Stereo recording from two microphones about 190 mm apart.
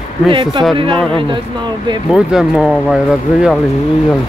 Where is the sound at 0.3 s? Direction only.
25° right (ahead or behind).